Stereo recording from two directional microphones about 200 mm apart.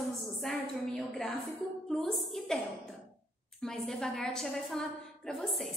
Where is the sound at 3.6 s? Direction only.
Centre (ahead or behind).